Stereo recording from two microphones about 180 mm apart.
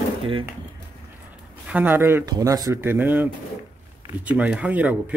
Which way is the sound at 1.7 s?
10° right (ahead or behind).